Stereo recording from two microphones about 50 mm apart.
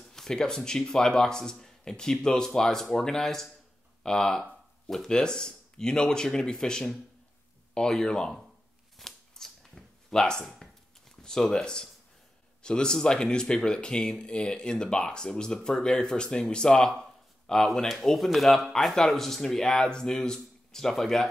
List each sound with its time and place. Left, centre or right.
0.0 s a sound: centre
0.7 s speech: centre
8.9 s shuffling cards: centre
10.5 s a sound: centre
12.6 s speech: centre
17.6 s speech: centre